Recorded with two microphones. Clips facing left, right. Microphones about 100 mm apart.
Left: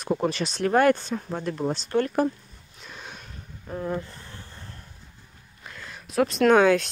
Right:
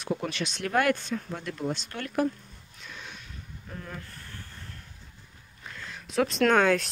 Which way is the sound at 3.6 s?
25° left (ahead or behind).